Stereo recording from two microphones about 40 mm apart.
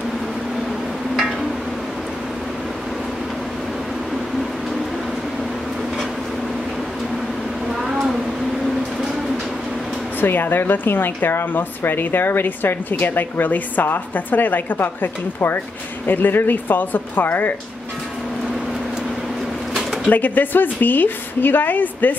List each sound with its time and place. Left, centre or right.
10.2 s a woman's voice: left
20.1 s a woman's voice: left